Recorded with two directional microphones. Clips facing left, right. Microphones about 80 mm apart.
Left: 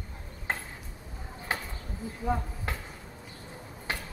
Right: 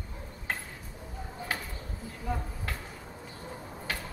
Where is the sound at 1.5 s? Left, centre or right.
Left.